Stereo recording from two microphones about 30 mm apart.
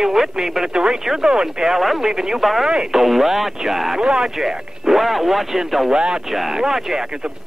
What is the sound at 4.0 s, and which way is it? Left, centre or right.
Speech, right.